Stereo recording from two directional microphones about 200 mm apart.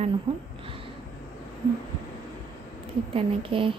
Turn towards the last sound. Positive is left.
turn(degrees=-25)  # may be behind; listen again after turning